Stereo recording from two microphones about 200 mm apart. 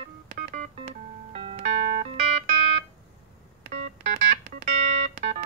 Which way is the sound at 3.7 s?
35° right (ahead or behind).